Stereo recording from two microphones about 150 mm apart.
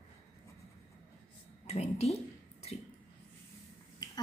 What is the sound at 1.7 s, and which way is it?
Speech, 45° left (ahead or behind).